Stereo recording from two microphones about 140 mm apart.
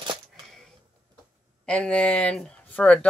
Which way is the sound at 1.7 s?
10° left (ahead or behind).